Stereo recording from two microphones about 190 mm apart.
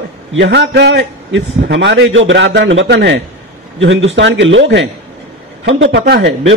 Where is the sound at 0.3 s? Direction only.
70° right (ahead or behind).